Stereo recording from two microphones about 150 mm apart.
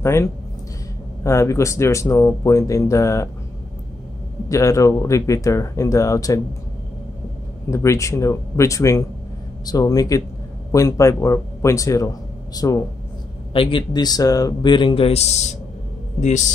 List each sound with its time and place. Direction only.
0.0 s speech: 20° left (ahead or behind)
4.5 s speech: 20° left (ahead or behind)
7.7 s speech: 20° left (ahead or behind)
13.5 s a man's voice: 35° left (ahead or behind); by 16.4 s 55° left (ahead or behind)